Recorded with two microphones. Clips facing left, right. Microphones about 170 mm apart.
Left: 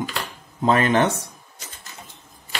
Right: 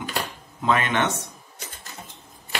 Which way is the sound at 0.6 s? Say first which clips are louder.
Left 5 dB; 35° left (ahead or behind).